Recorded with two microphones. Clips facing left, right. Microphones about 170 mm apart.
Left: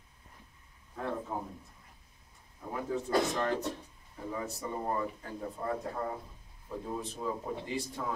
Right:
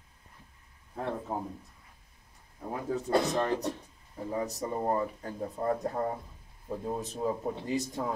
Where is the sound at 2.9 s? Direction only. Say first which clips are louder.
Right 3 dB; 25° right (ahead or behind).